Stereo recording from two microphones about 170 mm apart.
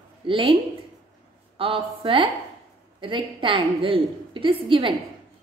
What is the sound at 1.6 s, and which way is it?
A woman's voice, 30° right (ahead or behind).